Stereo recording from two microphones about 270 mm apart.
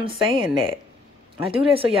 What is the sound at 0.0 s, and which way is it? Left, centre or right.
Speech, centre.